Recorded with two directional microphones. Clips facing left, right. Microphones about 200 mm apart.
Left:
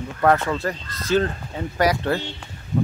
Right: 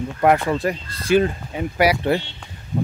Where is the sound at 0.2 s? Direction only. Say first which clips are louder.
Right 2 dB; 15° right (ahead or behind).